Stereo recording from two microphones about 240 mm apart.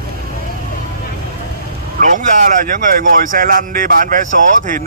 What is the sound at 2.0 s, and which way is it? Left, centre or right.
Speech, right.